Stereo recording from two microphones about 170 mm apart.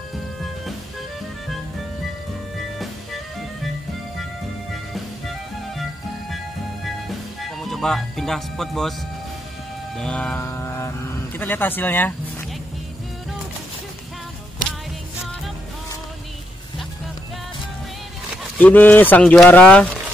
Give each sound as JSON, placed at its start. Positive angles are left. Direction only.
{"t": 0.1, "sound": "music", "side_deg": 0}
{"t": 6.3, "sound": "music", "side_deg": 0}
{"t": 9.9, "sound": "vehicle", "side_deg": 5}
{"t": 11.3, "sound": "speech", "side_deg": 10}
{"t": 18.6, "sound": "speech", "side_deg": 10}